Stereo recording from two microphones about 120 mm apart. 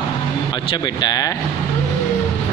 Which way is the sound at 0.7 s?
35° left (ahead or behind).